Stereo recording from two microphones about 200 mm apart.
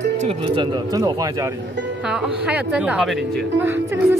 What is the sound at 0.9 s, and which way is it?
Speech, 15° right (ahead or behind).